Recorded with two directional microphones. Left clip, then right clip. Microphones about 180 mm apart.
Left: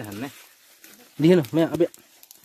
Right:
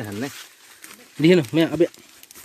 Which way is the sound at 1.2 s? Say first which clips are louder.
Right 2 dB; centre (ahead or behind).